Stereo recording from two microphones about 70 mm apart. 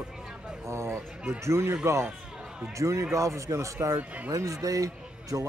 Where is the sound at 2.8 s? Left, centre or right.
Right.